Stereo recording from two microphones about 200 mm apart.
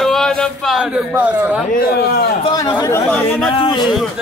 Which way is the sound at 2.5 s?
15° left (ahead or behind).